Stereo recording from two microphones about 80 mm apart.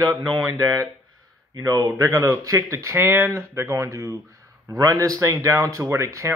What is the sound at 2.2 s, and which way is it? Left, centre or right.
A man's voice, right.